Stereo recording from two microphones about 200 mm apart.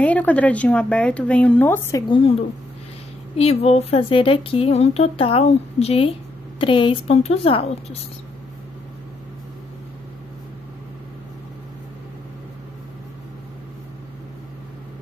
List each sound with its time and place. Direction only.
0.0 s a woman's voice: 5° left (ahead or behind)
2.0 s a woman's voice: 25° left (ahead or behind)
3.3 s a woman's voice: 30° left (ahead or behind)